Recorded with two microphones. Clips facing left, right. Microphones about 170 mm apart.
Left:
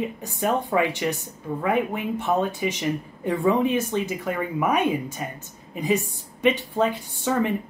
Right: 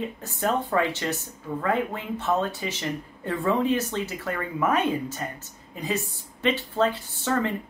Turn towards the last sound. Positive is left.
turn(degrees=15)  # may be behind; listen again after turning